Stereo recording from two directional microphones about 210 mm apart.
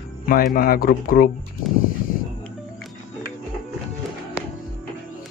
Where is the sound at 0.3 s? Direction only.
40° left (ahead or behind).